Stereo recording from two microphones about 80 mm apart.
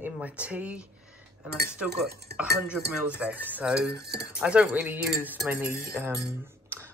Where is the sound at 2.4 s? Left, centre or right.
Centre.